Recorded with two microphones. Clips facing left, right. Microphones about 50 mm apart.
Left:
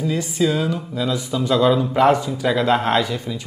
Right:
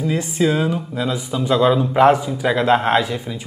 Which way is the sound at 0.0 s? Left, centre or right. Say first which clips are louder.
Right 1 dB; right.